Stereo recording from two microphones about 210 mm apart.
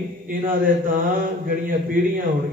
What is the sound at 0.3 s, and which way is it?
Speech, 40° right (ahead or behind).